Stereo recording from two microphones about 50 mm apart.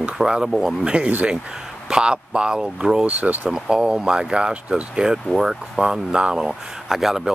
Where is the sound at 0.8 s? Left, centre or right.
Right.